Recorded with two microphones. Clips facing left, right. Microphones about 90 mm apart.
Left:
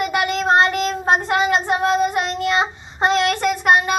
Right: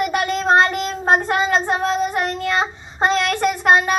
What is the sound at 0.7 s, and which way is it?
Child singing, 25° right (ahead or behind).